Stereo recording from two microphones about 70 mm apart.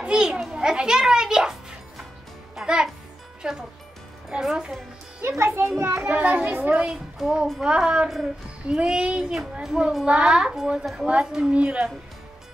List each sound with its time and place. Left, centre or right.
0.0 s a child's voice: centre
2.5 s music: centre
3.4 s speech: centre
5.4 s a child's voice: right
5.9 s a child's voice: right